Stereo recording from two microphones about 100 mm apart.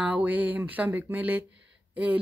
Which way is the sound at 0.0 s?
15° right (ahead or behind).